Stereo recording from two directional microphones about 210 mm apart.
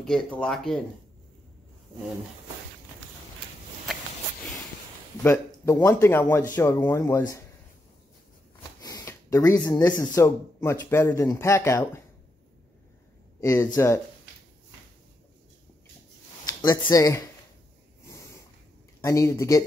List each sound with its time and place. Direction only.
0.0 s speech: 5° left (ahead or behind)
5.2 s speech: 10° left (ahead or behind)
8.8 s speech: 15° left (ahead or behind)
13.4 s speech: 15° left (ahead or behind)
16.4 s speech: 15° left (ahead or behind)
18.9 s speech: 15° left (ahead or behind)